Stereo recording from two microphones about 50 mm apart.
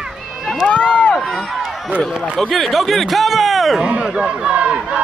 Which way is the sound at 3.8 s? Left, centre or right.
Right.